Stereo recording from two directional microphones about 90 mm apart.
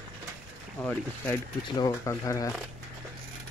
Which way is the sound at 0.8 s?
15° left (ahead or behind).